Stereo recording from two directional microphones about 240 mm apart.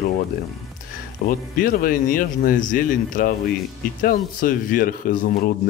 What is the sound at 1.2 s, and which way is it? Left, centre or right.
Speech, left.